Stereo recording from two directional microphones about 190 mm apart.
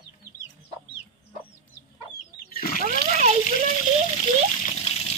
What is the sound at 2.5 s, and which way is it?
Wild animals, 50° left (ahead or behind).